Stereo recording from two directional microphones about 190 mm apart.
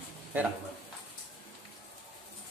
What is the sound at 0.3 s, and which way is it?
Speech, 10° right (ahead or behind).